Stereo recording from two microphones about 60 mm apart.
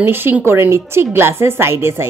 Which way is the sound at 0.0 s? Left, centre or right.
Right.